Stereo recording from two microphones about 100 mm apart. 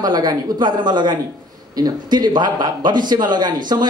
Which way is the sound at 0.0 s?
40° right (ahead or behind).